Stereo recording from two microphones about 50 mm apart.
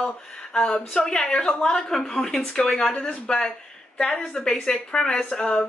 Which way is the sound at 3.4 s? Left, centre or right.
Centre.